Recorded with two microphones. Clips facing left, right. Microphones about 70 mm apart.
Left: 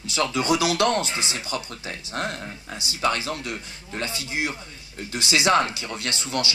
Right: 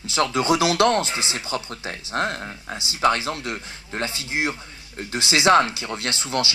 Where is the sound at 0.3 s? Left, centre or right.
Right.